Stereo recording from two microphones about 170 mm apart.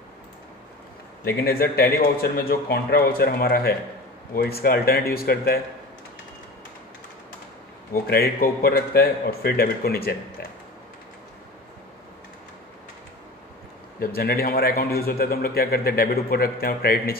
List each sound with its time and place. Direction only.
1.2 s a man's voice: 65° left (ahead or behind)
7.9 s a man's voice: 60° left (ahead or behind)
14.1 s a man's voice: 60° left (ahead or behind)